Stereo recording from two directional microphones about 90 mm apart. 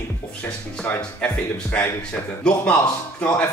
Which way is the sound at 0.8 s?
15° left (ahead or behind).